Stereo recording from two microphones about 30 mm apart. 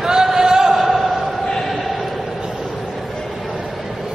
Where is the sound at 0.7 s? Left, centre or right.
Centre.